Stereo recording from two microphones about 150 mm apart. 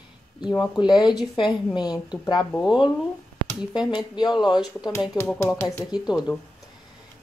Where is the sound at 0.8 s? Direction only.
30° left (ahead or behind).